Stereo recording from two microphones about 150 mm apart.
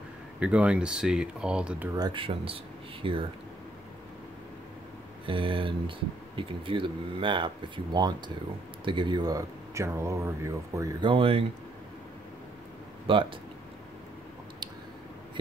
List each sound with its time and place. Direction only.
0.4 s speech: 5° right (ahead or behind)
2.0 s speech: 30° right (ahead or behind)
5.2 s speech: 35° right (ahead or behind)
13.1 s speech: 35° right (ahead or behind)